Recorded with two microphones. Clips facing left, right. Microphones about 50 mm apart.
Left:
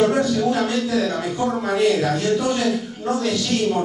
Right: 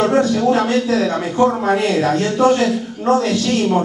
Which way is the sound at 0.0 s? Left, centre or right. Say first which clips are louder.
Right 3 dB; right.